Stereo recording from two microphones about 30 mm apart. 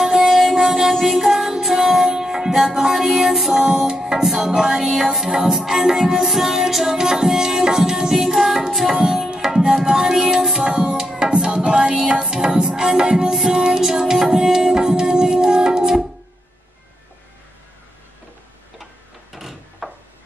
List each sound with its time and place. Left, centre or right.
0.0 s music: centre
3.5 s music: right
9.0 s tabla: centre
9.8 s music: right
10.6 s tabla: right
11.5 s music: right
19.3 s door: centre